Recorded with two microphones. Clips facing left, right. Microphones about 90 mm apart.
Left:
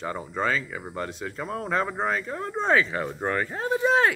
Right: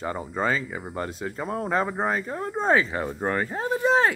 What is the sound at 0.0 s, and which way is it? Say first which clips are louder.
Speech: right 1 dB; 10° right (ahead or behind).